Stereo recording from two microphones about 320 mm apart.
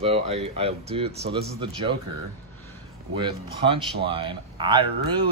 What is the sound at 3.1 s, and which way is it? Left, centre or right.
Speech, centre.